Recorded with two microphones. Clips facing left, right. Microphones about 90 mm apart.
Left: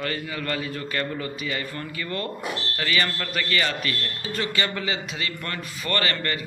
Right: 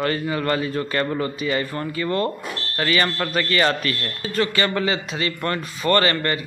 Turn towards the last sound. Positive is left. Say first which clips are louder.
# right 7 dB
turn(degrees=-35)  # may be behind; listen again after turning